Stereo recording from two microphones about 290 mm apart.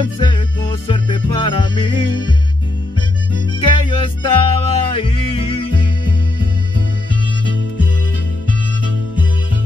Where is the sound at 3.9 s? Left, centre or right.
Centre.